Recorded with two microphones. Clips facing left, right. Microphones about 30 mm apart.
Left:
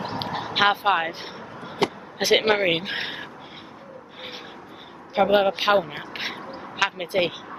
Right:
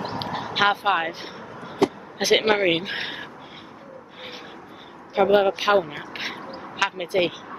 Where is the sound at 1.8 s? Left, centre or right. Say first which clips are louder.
Right 3 dB; left.